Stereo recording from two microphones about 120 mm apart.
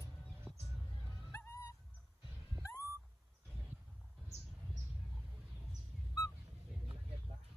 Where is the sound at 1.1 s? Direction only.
25° left (ahead or behind).